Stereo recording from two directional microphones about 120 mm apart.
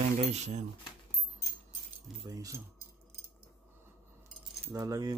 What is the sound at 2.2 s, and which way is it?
Speech, 30° right (ahead or behind).